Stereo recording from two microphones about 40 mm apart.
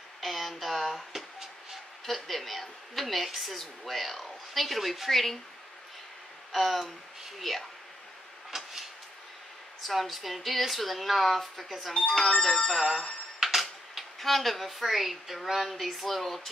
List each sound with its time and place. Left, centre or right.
0.2 s speech: centre
6.5 s speech: centre
8.5 s vehicle: centre
9.8 s speech: centre
11.9 s speech: centre
12.2 s speech: centre
13.4 s tick-tock: centre
14.2 s speech: centre